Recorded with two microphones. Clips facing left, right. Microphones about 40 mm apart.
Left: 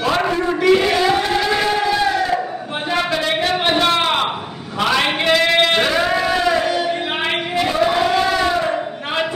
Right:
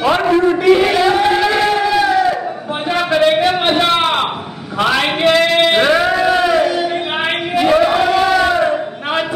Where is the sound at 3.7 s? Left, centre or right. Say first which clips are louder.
Right 2 dB; centre.